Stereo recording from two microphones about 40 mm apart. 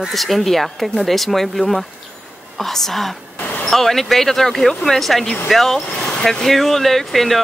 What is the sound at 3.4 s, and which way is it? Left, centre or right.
Vehicle, left.